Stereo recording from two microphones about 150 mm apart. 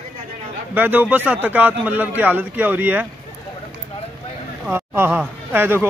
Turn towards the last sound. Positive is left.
turn(degrees=-15)  # may be behind; listen again after turning